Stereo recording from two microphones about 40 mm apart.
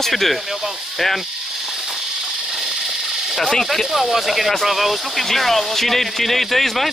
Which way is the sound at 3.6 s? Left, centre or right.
Centre.